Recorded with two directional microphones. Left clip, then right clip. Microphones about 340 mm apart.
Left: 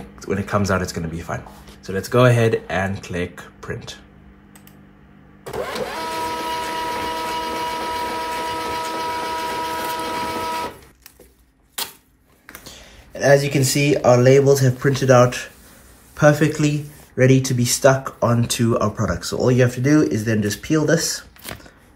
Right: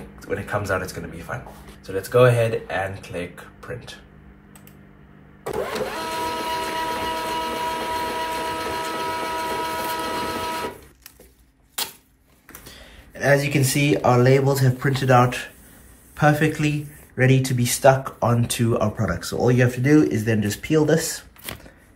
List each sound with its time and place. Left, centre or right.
0.2 s speech: left
5.6 s printer: centre
11.8 s a sound: centre
13.1 s speech: centre